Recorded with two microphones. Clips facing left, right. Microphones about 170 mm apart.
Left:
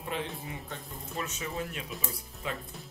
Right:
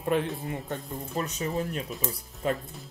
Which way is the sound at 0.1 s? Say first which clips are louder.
Right 8 dB; 50° right (ahead or behind).